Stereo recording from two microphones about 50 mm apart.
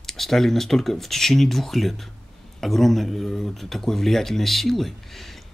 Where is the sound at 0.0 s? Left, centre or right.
Centre.